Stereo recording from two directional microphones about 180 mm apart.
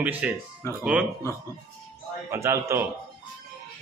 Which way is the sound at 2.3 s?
15° right (ahead or behind).